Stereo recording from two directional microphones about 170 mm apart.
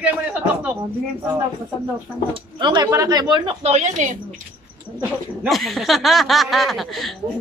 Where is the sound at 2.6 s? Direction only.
25° right (ahead or behind); by 4.1 s 40° right (ahead or behind).